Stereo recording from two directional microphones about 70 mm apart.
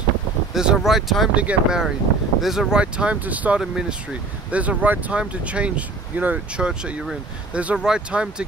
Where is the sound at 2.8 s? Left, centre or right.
Centre.